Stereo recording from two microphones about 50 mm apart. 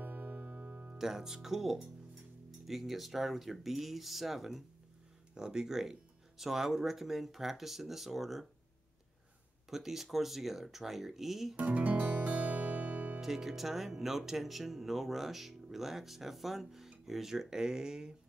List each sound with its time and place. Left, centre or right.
0.0 s music: right
0.9 s speech: centre
5.3 s speech: centre
9.7 s speech: centre
11.5 s music: right
13.2 s speech: centre